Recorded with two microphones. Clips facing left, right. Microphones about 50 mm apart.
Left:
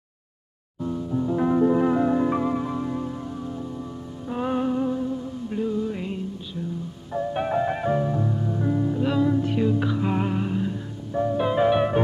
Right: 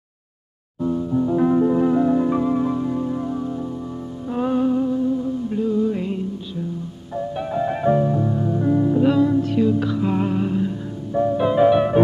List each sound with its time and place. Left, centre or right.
0.7 s music: centre
1.3 s music: centre
3.1 s music: centre
4.3 s music: centre
7.3 s music: left
7.6 s music: centre
9.1 s music: centre
9.4 s music: centre